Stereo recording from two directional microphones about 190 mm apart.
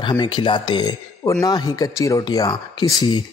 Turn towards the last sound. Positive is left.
turn(degrees=20)  # may be behind; listen again after turning